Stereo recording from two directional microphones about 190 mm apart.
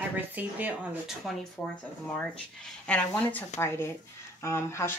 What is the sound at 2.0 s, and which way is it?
Speech, 5° left (ahead or behind).